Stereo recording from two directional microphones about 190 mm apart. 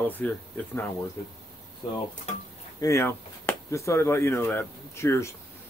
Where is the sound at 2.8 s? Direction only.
15° left (ahead or behind).